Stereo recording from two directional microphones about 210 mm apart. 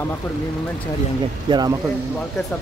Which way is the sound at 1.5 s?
20° right (ahead or behind).